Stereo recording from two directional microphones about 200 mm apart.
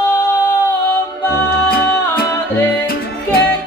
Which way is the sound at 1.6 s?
50° left (ahead or behind).